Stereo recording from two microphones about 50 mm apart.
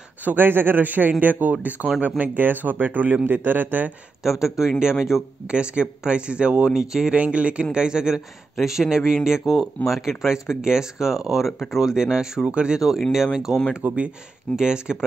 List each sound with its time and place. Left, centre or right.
0.2 s speech: right
4.2 s speech: centre
5.5 s speech: right
6.7 s speech: centre
7.2 s speech: right
13.1 s speech: centre
13.8 s speech: right
14.6 s speech: centre